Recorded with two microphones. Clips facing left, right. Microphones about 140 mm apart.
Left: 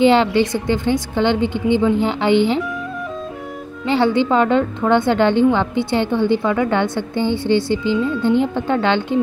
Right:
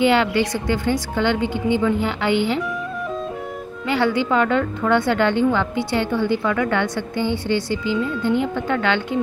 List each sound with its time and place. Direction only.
0.0 s a woman's voice: 25° left (ahead or behind)
3.8 s a woman's voice: 25° left (ahead or behind)